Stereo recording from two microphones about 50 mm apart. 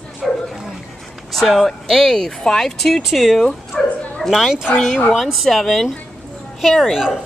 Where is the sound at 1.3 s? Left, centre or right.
Centre.